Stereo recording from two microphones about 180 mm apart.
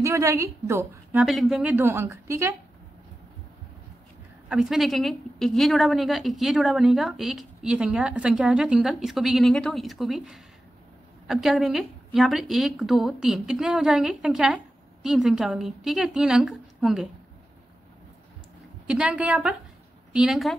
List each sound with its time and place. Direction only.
0.0 s a woman's voice: 15° right (ahead or behind)
1.2 s a woman's voice: centre (ahead or behind)
4.5 s a woman's voice: 5° right (ahead or behind)
18.9 s a woman's voice: 5° right (ahead or behind)